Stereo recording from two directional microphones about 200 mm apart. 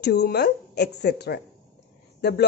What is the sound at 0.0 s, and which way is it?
Speech, 55° left (ahead or behind).